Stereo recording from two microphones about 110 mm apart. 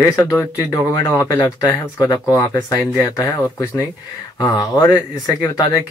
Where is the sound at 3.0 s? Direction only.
20° left (ahead or behind).